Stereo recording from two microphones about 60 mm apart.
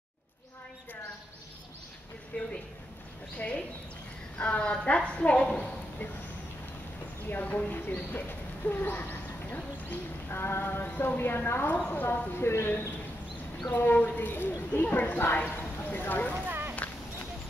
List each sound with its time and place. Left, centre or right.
2.3 s a sound: left
3.3 s a woman's voice: centre
7.2 s speech: left
16.8 s clip-clop: left